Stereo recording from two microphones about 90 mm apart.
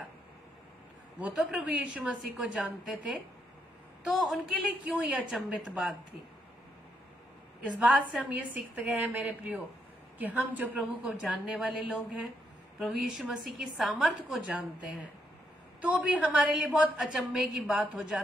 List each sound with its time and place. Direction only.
1.2 s a woman's voice: 10° right (ahead or behind)
7.8 s a woman's voice: 10° right (ahead or behind)
11.5 s a woman's voice: centre (ahead or behind)
15.8 s a woman's voice: 15° right (ahead or behind)